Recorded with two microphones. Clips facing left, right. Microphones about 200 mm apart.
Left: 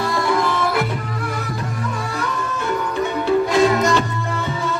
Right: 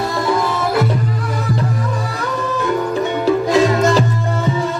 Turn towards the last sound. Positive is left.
turn(degrees=-40)  # may be behind; listen again after turning